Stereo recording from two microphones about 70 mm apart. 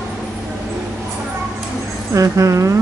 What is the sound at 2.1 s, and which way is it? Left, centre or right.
Speech, right.